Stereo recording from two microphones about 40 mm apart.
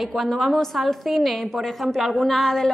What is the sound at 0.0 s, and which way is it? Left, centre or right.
A woman's voice, centre.